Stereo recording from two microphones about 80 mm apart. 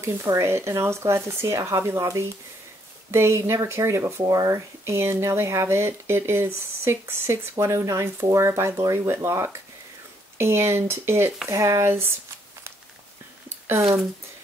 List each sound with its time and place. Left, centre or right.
0.0 s speech: right
4.2 s speech: right